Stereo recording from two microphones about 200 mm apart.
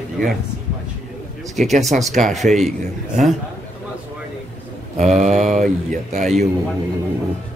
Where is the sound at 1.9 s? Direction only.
40° right (ahead or behind).